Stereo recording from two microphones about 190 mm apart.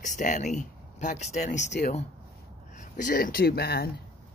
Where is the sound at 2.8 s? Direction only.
40° left (ahead or behind).